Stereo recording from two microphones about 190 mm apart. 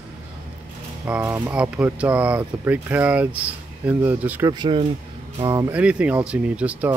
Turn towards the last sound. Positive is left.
turn(degrees=-5)  # may be behind; listen again after turning